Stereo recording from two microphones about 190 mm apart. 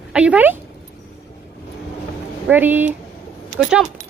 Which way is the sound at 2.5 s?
10° right (ahead or behind).